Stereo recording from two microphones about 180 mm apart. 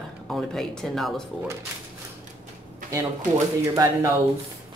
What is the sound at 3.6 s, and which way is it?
Speech, 20° right (ahead or behind).